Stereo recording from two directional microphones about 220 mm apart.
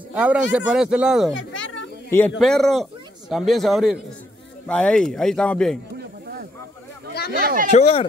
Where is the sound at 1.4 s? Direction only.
60° left (ahead or behind).